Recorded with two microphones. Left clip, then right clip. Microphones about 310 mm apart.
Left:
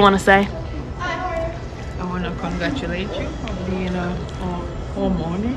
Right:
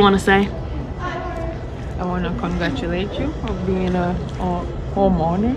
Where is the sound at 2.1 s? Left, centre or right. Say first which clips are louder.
Right 2 dB; centre.